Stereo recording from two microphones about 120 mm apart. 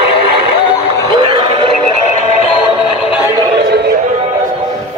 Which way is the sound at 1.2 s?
40° right (ahead or behind).